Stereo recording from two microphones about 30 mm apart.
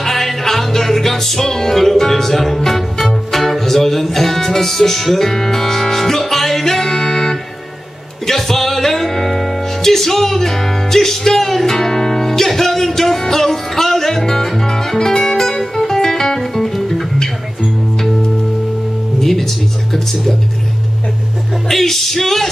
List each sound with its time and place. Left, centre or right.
0.0 s music: centre
19.1 s music: centre
21.6 s music: centre